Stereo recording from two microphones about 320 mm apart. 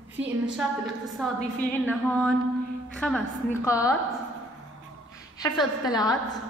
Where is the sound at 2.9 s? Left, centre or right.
Centre.